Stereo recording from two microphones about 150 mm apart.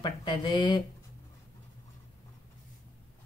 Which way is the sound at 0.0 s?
30° left (ahead or behind).